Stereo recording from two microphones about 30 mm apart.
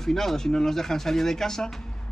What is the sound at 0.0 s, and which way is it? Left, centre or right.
A man's voice, centre.